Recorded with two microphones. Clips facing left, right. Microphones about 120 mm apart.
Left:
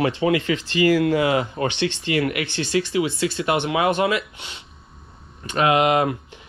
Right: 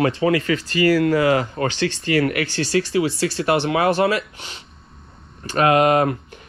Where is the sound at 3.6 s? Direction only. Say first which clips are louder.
Right 1 dB; 35° right (ahead or behind).